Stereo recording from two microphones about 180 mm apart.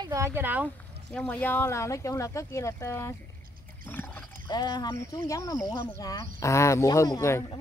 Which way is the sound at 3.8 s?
10° left (ahead or behind).